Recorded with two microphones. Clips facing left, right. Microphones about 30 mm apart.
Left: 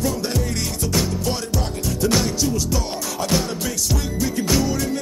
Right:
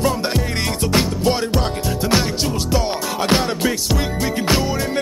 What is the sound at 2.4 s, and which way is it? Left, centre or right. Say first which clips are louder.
Music: right 3 dB; right.